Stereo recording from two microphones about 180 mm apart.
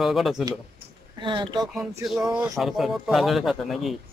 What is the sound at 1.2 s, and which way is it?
Speech, 25° right (ahead or behind).